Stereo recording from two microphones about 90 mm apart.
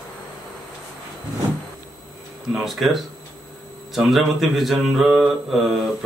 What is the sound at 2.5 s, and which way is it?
Speech, centre (ahead or behind).